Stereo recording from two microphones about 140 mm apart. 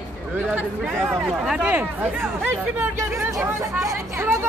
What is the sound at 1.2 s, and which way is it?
Speech, 5° right (ahead or behind).